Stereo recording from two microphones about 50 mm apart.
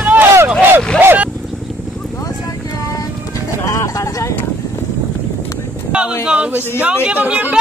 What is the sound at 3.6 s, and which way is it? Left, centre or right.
Vehicle, left.